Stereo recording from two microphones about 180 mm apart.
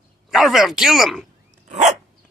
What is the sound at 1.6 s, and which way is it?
Dog, 40° right (ahead or behind).